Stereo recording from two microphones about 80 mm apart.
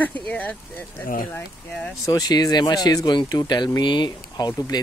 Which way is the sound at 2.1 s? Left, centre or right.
Left.